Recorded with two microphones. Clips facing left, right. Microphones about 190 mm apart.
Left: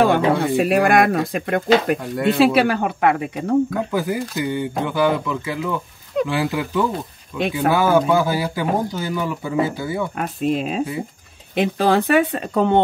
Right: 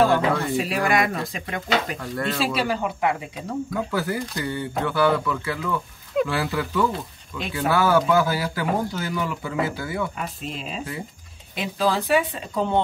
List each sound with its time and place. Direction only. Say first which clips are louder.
0.0 s speech: left 3 dB; 55° left (ahead or behind)
2.0 s speech: left 7 dB; 15° left (ahead or behind)
2.3 s speech: left 10 dB; 65° left (ahead or behind)
3.9 s speech: left 4 dB; 15° left (ahead or behind)
10.1 s speech: left 11 dB; 55° left (ahead or behind)